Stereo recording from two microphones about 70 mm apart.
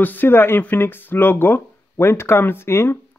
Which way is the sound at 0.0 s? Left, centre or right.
Left.